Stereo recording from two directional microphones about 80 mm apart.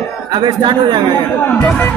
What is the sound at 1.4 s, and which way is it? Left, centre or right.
Speech, centre.